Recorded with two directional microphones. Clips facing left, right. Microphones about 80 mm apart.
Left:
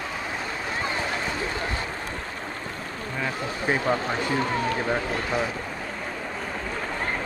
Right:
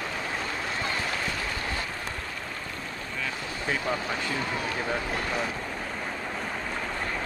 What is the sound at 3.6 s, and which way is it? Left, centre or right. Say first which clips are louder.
Speech: left 5 dB; left.